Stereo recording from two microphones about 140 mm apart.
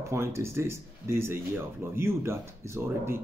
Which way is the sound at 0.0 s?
20° right (ahead or behind).